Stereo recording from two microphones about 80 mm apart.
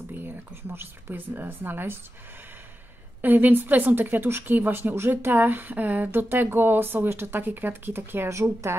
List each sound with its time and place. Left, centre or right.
0.1 s speech: right
3.2 s speech: right